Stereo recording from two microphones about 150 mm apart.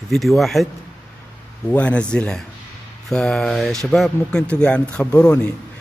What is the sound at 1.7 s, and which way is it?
A man's voice, 10° left (ahead or behind).